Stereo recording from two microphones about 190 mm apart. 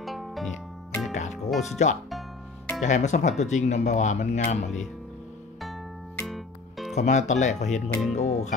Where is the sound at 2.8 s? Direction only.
40° left (ahead or behind).